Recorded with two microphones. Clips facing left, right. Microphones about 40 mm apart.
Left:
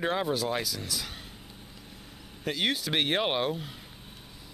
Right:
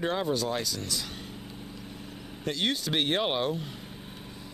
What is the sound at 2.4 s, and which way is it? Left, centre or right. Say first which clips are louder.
Speech: even; centre.